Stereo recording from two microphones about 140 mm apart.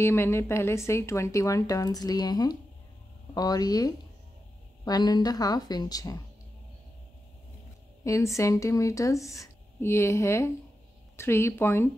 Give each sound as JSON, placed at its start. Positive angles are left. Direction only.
{"t": 0.0, "sound": "a woman's voice", "side_deg": 15}
{"t": 8.0, "sound": "a woman's voice", "side_deg": 20}